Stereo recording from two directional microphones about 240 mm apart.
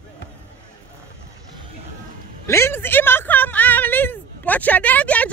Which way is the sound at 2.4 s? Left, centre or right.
Centre.